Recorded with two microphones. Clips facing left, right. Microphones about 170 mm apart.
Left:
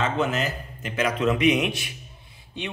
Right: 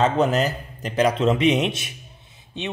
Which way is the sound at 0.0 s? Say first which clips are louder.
Right 5 dB; 35° right (ahead or behind).